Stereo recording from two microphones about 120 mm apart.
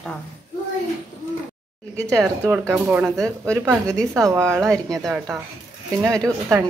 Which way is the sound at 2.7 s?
10° right (ahead or behind).